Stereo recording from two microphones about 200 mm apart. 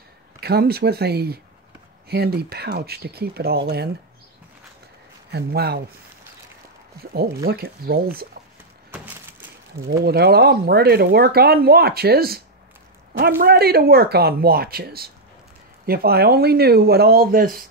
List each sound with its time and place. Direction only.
0.4 s speech: 50° right (ahead or behind)
5.3 s speech: 55° right (ahead or behind)
7.4 s speech: 50° right (ahead or behind)
8.9 s a sound: 5° right (ahead or behind)
9.8 s speech: 55° right (ahead or behind)
13.4 s speech: 50° right (ahead or behind)